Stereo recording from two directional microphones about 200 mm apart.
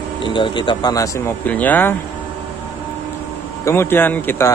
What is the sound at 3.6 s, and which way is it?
Speech, 10° left (ahead or behind).